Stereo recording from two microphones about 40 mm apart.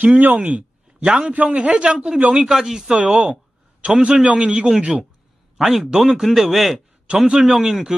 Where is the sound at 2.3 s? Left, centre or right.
Centre.